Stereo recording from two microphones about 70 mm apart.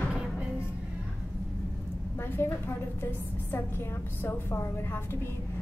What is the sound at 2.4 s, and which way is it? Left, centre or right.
Speech, left.